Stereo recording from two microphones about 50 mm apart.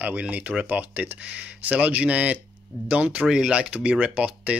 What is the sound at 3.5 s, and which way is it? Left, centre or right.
Speech, right.